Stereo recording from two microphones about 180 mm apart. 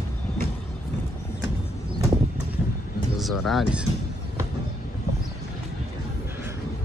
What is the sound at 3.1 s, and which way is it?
Speech, centre (ahead or behind).